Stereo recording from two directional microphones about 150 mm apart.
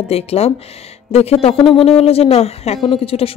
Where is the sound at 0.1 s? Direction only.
40° left (ahead or behind).